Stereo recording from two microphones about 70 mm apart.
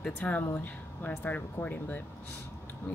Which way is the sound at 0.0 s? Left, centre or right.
Left.